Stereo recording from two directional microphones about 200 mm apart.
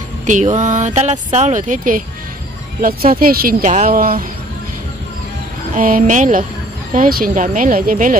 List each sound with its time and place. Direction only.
0.3 s speech: 40° right (ahead or behind)
3.1 s speech: 45° right (ahead or behind)
5.8 s speech: 45° right (ahead or behind)